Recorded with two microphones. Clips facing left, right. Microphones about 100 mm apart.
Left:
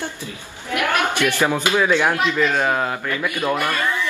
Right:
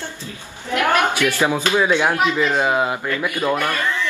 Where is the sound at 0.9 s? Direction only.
15° right (ahead or behind).